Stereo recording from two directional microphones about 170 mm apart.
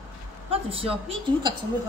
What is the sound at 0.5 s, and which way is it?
Speech, 35° right (ahead or behind).